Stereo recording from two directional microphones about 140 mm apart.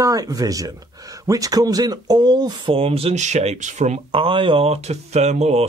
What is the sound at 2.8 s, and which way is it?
Speech, 45° right (ahead or behind).